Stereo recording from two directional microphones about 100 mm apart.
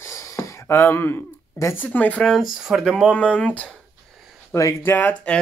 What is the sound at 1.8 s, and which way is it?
Speech, 15° left (ahead or behind).